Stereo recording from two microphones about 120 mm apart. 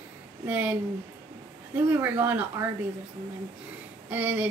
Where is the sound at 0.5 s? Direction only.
15° right (ahead or behind).